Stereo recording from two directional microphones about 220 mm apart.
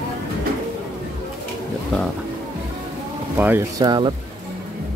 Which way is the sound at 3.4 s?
10° right (ahead or behind).